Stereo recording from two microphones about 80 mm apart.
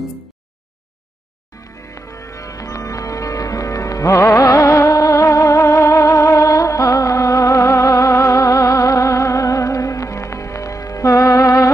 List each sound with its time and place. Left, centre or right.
2.0 s music: left